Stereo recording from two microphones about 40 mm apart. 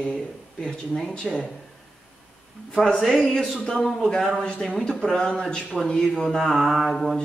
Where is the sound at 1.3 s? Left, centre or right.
Centre.